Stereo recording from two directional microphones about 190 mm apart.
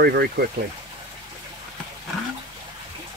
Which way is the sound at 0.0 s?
55° right (ahead or behind).